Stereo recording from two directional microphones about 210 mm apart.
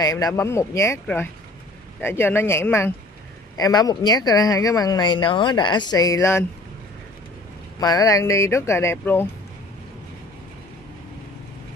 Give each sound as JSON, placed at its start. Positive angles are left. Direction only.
{"t": 0.0, "sound": "speech", "side_deg": 15}
{"t": 7.8, "sound": "speech", "side_deg": 15}